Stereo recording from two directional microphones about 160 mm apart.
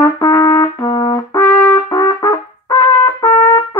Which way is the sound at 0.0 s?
25° left (ahead or behind).